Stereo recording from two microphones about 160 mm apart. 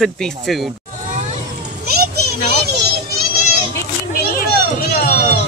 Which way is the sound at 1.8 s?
75° right (ahead or behind).